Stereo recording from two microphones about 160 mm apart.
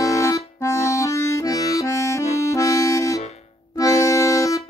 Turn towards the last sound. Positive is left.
turn(degrees=20)  # may be behind; listen again after turning